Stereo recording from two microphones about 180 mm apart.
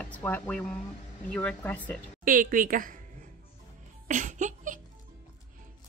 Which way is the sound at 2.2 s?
50° right (ahead or behind).